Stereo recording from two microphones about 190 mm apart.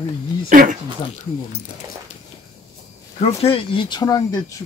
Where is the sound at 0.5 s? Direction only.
45° right (ahead or behind).